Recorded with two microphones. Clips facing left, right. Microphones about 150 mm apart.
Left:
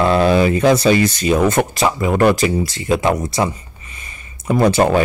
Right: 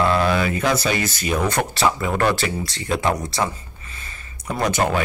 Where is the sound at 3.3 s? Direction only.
15° left (ahead or behind).